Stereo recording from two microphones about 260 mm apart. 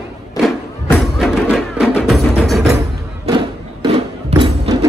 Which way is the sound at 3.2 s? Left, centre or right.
Centre.